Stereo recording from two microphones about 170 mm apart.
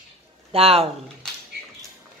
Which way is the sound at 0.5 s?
35° right (ahead or behind).